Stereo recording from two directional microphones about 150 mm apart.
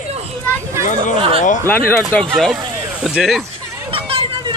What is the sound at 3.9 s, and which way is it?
Hubbub, 35° right (ahead or behind).